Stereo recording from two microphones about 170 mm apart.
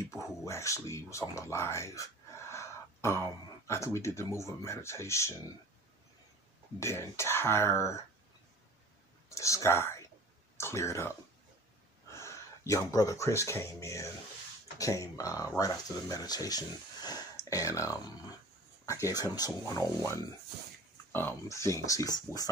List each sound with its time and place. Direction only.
0.5 s speech: 15° left (ahead or behind)
6.8 s speech: 15° left (ahead or behind)
9.3 s speech: 20° left (ahead or behind)
12.1 s speech: 15° left (ahead or behind)
21.1 s speech: 10° left (ahead or behind)
22.3 s speech: 15° right (ahead or behind)